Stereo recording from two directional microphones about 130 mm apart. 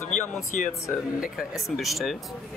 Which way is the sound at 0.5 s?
75° left (ahead or behind).